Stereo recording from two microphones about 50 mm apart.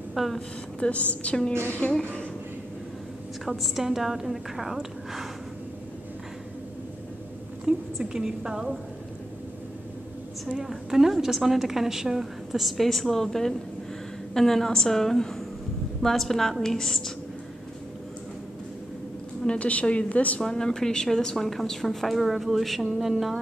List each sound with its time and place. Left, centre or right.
0.1 s a woman's voice: centre
0.7 s a woman's voice: left
3.4 s a woman's voice: centre
7.6 s a woman's voice: centre
10.6 s a woman's voice: centre
19.4 s a woman's voice: left
20.4 s a woman's voice: centre